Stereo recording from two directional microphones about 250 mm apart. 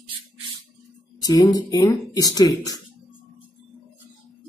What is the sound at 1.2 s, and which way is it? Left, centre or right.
Speech, centre.